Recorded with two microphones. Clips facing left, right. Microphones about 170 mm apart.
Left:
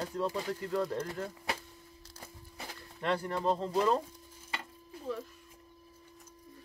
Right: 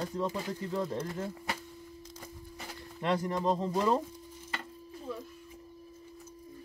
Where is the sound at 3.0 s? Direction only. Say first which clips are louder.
Right 2 dB; 10° right (ahead or behind).